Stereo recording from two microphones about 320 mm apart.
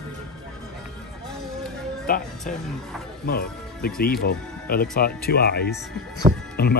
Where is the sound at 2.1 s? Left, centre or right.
Left.